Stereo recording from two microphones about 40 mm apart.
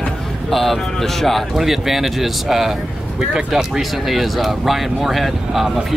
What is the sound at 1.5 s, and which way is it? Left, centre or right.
Speech, centre.